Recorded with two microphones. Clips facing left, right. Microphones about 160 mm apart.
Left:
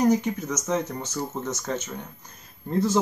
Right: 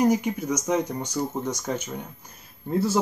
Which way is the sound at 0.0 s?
10° right (ahead or behind).